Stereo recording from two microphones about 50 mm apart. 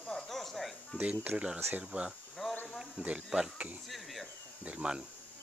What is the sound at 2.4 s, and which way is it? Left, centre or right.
Speech, centre.